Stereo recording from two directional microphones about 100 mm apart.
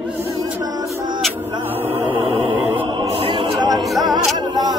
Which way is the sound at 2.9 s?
65° right (ahead or behind).